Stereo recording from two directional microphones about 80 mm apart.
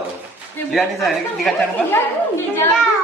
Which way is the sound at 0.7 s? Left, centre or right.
Centre.